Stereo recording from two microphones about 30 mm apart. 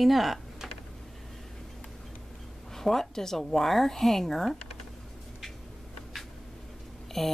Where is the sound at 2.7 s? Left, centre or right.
Centre.